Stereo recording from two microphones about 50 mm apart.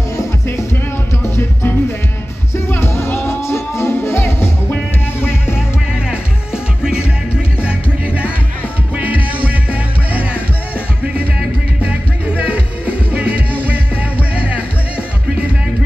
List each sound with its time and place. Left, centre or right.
1.3 s music: left
6.0 s music: centre
11.8 s music: right